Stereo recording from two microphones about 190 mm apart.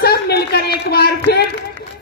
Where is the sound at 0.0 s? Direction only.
55° left (ahead or behind).